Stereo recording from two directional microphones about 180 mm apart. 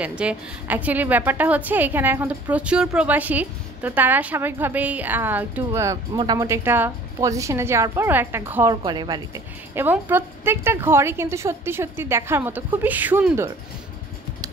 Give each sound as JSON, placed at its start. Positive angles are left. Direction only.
{"t": 0.0, "sound": "a woman's voice", "side_deg": -5}
{"t": 8.8, "sound": "a woman's voice", "side_deg": -25}
{"t": 9.8, "sound": "a woman's voice", "side_deg": -10}